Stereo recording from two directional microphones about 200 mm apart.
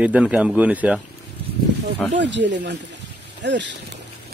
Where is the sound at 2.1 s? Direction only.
65° right (ahead or behind).